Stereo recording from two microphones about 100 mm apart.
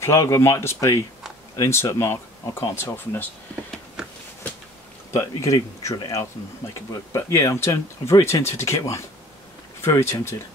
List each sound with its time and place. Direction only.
0.0 s speech: 30° left (ahead or behind)
5.1 s speech: 35° left (ahead or behind)